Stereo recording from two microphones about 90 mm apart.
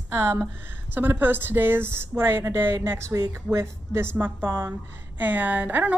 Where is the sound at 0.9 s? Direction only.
20° right (ahead or behind).